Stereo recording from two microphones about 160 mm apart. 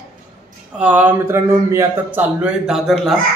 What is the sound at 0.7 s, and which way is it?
Speech, 10° right (ahead or behind).